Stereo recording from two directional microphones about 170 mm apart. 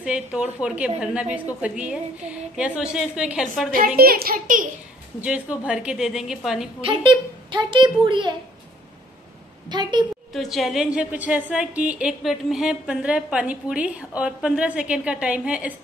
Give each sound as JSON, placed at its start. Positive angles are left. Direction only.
{"t": 0.0, "sound": "a woman's voice", "side_deg": -5}
{"t": 3.7, "sound": "speech", "side_deg": -60}
{"t": 5.2, "sound": "a woman's voice", "side_deg": -5}
{"t": 6.8, "sound": "a child's voice", "side_deg": -30}
{"t": 9.7, "sound": "a child's voice", "side_deg": -25}
{"t": 10.3, "sound": "a woman's voice", "side_deg": 0}